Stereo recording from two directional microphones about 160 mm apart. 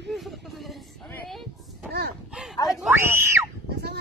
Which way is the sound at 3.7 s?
90° right.